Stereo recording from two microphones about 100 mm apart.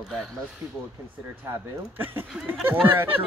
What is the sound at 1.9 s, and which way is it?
Speech, 20° right (ahead or behind).